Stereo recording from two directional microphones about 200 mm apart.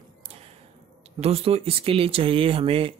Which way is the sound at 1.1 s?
30° right (ahead or behind).